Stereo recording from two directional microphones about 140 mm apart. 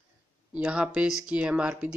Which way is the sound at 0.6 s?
10° right (ahead or behind).